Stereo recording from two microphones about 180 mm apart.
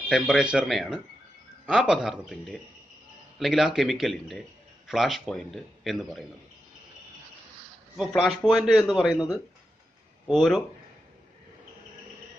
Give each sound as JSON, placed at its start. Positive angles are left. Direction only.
{"t": 0.1, "sound": "a man's voice", "side_deg": -5}
{"t": 8.0, "sound": "a man's voice", "side_deg": 0}
{"t": 10.2, "sound": "a man's voice", "side_deg": 0}